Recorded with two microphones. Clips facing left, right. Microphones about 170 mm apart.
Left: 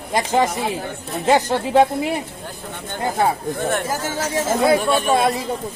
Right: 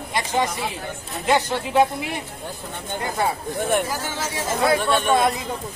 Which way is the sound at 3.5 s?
15° right (ahead or behind).